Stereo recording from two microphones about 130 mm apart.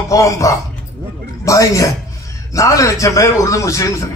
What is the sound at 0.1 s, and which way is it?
A man's voice, 25° left (ahead or behind).